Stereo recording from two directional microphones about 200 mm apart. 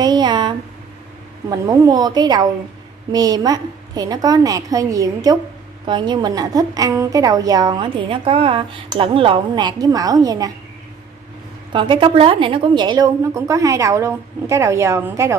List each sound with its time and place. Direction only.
0.0 s a sound: 20° right (ahead or behind)
1.5 s a woman's voice: 20° right (ahead or behind)
11.7 s a woman's voice: 25° right (ahead or behind)